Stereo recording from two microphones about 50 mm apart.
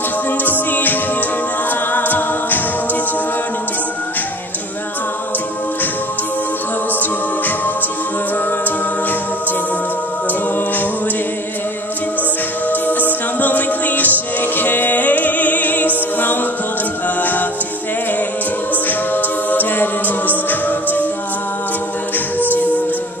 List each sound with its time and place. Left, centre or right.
0.5 s a capella: left
7.0 s a capella: left
13.4 s music: left
17.2 s a capella: left
19.5 s a capella: left
22.5 s music: left